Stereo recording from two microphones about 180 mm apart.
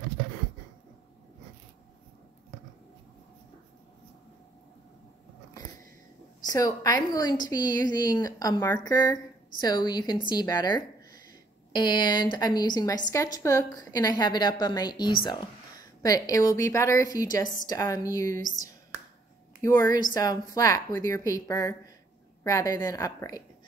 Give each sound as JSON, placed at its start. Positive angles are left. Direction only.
{"t": 6.4, "sound": "a woman's voice", "side_deg": 20}